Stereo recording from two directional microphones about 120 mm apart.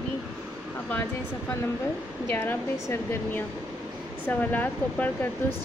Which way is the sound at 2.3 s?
20° left (ahead or behind).